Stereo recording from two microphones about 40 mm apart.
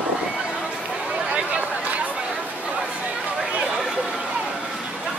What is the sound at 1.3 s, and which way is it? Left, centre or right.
Chatter, right.